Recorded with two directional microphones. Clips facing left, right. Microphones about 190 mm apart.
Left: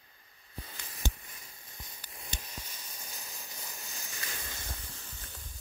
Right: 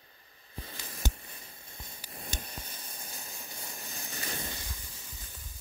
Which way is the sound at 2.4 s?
55° right (ahead or behind).